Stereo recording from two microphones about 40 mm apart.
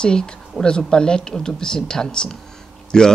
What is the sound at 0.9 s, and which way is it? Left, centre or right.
A man's voice, left.